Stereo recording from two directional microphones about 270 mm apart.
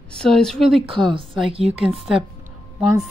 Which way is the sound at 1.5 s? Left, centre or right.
Right.